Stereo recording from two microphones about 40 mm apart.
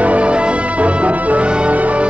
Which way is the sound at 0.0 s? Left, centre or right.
Right.